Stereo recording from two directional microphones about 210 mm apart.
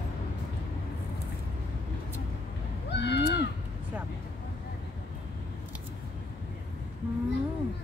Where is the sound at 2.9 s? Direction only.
55° left (ahead or behind).